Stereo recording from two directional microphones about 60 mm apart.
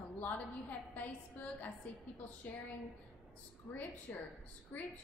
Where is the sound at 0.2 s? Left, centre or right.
Left.